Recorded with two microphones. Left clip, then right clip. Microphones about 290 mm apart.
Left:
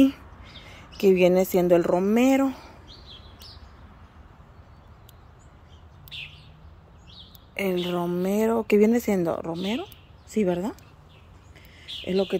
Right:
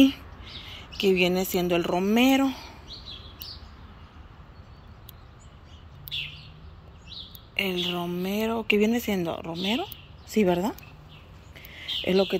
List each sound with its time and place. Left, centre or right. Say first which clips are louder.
0.0 s speech: even; centre
7.5 s a woman's voice: left 1 dB; centre
9.6 s speech: right 2 dB; centre
11.5 s a sound: right 7 dB; centre
12.0 s speech: right 2 dB; centre